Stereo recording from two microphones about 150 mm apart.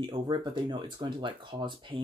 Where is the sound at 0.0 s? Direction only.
30° right (ahead or behind).